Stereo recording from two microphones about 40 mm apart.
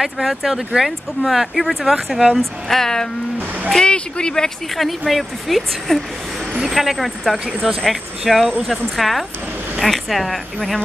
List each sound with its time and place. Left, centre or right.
0.0 s speech: centre
2.3 s speech: centre
4.7 s speech: centre